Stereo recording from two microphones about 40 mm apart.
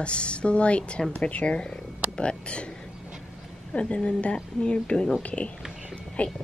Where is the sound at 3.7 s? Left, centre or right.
Left.